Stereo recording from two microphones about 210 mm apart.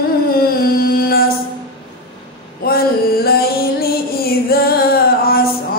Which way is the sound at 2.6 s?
45° left (ahead or behind).